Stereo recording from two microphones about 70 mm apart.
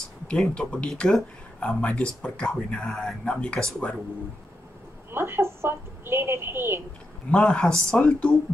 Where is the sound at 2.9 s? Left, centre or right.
Centre.